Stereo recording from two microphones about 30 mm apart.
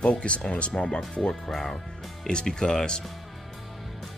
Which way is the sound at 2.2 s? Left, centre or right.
Left.